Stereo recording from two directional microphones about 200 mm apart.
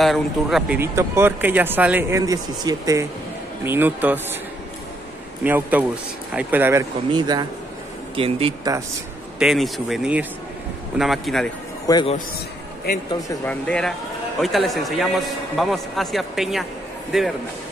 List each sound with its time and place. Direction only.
0.0 s speech: centre (ahead or behind)
5.4 s speech: 10° right (ahead or behind); by 8.7 s 30° right (ahead or behind)
9.4 s speech: centre (ahead or behind)
11.9 s a man's voice: 25° left (ahead or behind)
13.5 s speech: 5° left (ahead or behind)